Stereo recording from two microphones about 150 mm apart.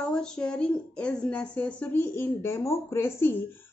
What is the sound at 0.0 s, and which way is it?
Speech, 5° left (ahead or behind).